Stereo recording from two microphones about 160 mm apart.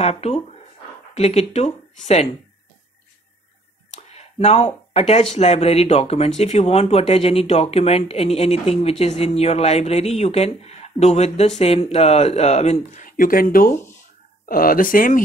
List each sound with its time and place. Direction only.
0.0 s speech: 40° left (ahead or behind)
3.9 s speech: 40° left (ahead or behind)
12.9 s speech: 55° left (ahead or behind)